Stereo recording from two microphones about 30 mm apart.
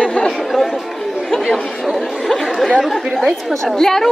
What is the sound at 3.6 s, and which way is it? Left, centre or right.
Speech, centre.